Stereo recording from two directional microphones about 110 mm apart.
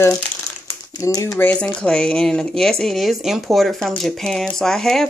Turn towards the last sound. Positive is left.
turn(degrees=5)  # may be behind; listen again after turning